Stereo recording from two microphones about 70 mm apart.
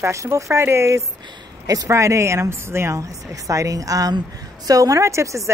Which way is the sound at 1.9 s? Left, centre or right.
Right.